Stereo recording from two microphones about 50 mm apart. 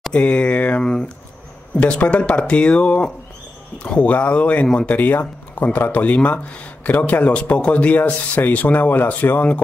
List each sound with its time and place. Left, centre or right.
0.1 s speech: left
0.8 s speech: centre
1.8 s speech: left